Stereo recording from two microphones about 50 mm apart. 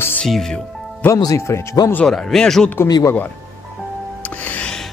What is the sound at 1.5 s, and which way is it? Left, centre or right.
Speech, left.